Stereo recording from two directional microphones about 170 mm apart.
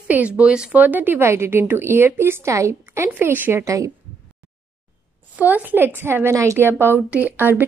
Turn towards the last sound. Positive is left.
turn(degrees=-10)  # may be behind; listen again after turning